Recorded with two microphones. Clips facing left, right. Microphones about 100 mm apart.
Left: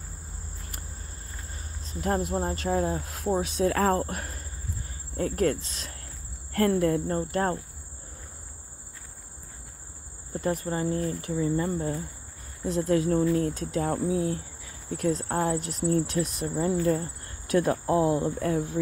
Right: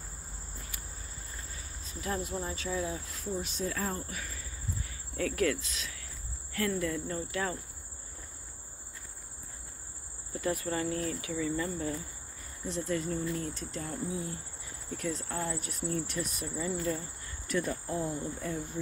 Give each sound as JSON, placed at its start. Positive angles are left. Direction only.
{"t": 2.0, "sound": "cricket", "side_deg": 50}
{"t": 4.2, "sound": "cricket", "side_deg": 55}
{"t": 4.8, "sound": "speech", "side_deg": 35}
{"t": 6.5, "sound": "cricket", "side_deg": 55}
{"t": 10.3, "sound": "cricket", "side_deg": 45}
{"t": 10.7, "sound": "speech", "side_deg": 25}
{"t": 12.6, "sound": "cricket", "side_deg": 45}
{"t": 12.9, "sound": "speech", "side_deg": 65}
{"t": 14.9, "sound": "cricket", "side_deg": 55}
{"t": 16.4, "sound": "speech", "side_deg": 55}